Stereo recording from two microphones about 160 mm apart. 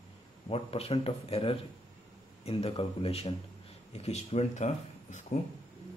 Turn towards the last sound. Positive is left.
turn(degrees=45)  # may be behind; listen again after turning